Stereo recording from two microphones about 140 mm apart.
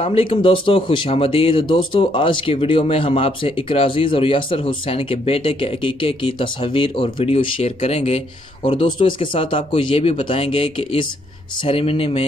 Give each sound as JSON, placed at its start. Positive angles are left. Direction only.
{"t": 0.0, "sound": "speech", "side_deg": 40}